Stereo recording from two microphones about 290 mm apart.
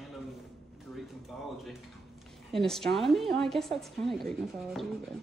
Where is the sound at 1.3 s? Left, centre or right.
Centre.